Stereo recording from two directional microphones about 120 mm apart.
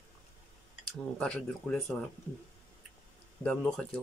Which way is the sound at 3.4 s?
5° left (ahead or behind).